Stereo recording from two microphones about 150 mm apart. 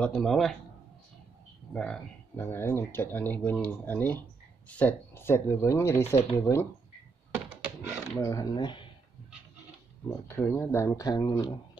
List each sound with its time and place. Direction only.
0.0 s a man's voice: 5° left (ahead or behind)
1.7 s speech: 5° left (ahead or behind)
8.2 s speech: 25° left (ahead or behind)
10.0 s speech: 15° left (ahead or behind)